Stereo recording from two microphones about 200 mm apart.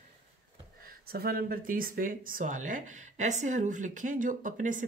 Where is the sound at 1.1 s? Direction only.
50° right (ahead or behind).